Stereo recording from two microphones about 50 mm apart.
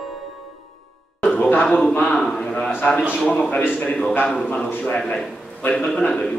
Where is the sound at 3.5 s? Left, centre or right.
Left.